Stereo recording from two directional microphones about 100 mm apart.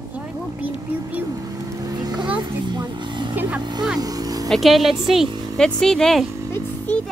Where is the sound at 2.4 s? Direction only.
50° right (ahead or behind).